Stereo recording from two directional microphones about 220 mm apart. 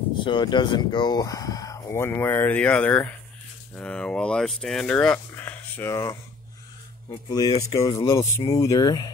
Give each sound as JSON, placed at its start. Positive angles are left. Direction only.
{"t": 0.2, "sound": "speech", "side_deg": 20}